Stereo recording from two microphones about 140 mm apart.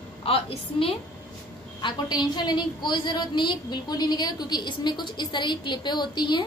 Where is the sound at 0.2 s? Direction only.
40° left (ahead or behind).